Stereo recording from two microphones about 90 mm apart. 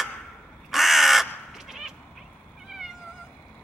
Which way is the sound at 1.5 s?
5° right (ahead or behind).